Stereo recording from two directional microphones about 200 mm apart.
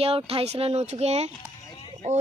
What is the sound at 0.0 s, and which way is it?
Speech, 30° right (ahead or behind).